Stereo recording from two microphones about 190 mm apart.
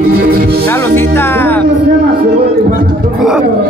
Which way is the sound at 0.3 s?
55° right (ahead or behind).